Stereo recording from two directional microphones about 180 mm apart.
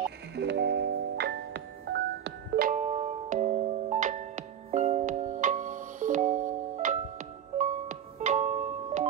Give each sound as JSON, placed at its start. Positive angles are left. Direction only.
{"t": 0.4, "sound": "music", "side_deg": -70}
{"t": 2.7, "sound": "music", "side_deg": -40}